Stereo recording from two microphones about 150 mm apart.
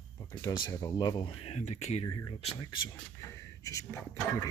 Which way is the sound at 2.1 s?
25° left (ahead or behind).